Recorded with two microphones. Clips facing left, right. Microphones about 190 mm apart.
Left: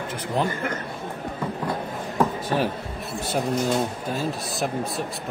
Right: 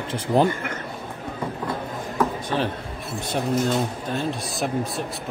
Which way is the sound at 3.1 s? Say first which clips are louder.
Right 1 dB; centre (ahead or behind).